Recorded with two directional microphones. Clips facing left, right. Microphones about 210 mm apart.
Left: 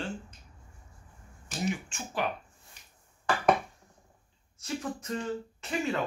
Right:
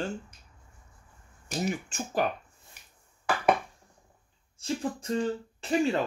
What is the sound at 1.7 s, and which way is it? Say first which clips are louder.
Speech: right 4 dB; 40° right (ahead or behind).